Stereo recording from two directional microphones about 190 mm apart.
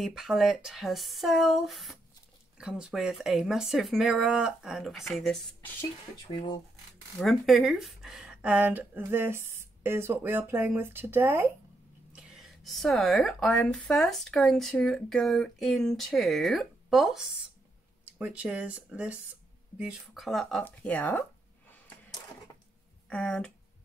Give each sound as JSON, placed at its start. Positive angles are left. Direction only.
{"t": 0.0, "sound": "speech", "side_deg": 0}
{"t": 6.3, "sound": "speech", "side_deg": 25}
{"t": 7.2, "sound": "speech", "side_deg": 0}
{"t": 20.6, "sound": "a sound", "side_deg": 10}
{"t": 23.0, "sound": "speech", "side_deg": 5}